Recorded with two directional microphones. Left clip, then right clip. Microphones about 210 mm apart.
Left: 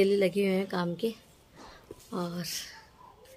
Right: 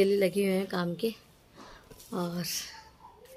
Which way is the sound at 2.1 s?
15° right (ahead or behind).